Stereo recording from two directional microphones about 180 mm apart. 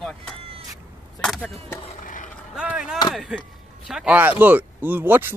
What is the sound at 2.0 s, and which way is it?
Skateboard, 45° left (ahead or behind).